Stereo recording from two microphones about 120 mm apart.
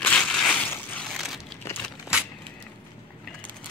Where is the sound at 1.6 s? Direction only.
25° left (ahead or behind).